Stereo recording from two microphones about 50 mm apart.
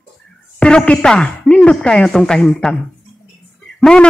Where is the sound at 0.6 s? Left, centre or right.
Left.